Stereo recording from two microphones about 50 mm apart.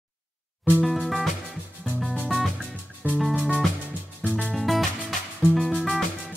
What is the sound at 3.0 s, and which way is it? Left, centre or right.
Music, right.